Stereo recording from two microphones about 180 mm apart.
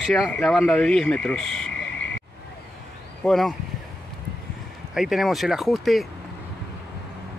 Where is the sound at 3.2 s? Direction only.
Centre (ahead or behind).